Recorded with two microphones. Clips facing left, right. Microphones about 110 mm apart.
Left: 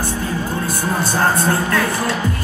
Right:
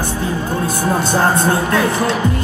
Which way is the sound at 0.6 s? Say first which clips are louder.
Right 3 dB; 20° right (ahead or behind).